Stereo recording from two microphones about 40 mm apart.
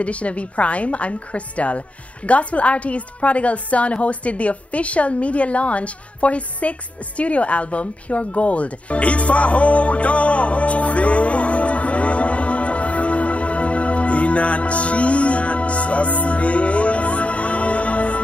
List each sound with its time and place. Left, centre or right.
0.0 s a woman's voice: left
7.2 s music: left